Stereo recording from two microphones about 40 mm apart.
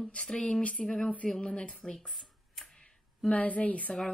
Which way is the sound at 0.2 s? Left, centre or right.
Centre.